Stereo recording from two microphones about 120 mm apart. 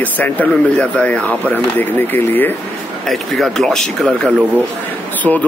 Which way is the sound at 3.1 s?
Centre (ahead or behind).